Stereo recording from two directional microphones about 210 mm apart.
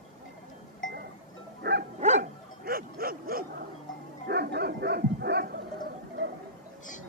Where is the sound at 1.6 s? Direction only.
50° right (ahead or behind).